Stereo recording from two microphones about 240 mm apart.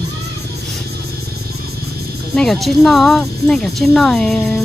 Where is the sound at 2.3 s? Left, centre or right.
Centre.